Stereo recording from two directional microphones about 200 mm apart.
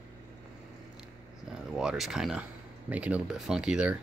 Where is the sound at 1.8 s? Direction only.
5° right (ahead or behind).